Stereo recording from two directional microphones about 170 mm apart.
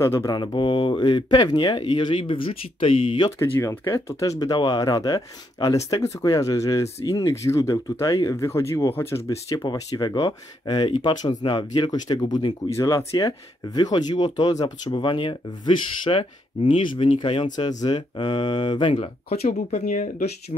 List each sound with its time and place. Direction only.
0.0 s speech: 20° left (ahead or behind)
3.3 s speech: 15° left (ahead or behind); by 20.2 s 50° left (ahead or behind)